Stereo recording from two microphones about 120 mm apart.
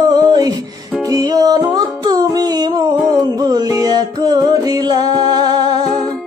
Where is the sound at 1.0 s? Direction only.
30° right (ahead or behind).